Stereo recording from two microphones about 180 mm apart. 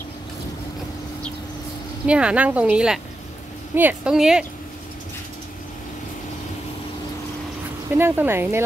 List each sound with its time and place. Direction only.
2.0 s a woman's voice: 5° right (ahead or behind)
8.0 s speech: 10° right (ahead or behind)